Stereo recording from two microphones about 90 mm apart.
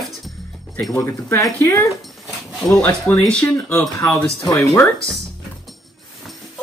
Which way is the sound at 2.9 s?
10° left (ahead or behind).